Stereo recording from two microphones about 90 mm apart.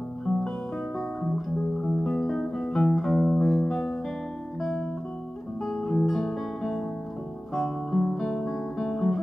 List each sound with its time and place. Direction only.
1.9 s music: 5° left (ahead or behind)
5.7 s guitar: 5° left (ahead or behind)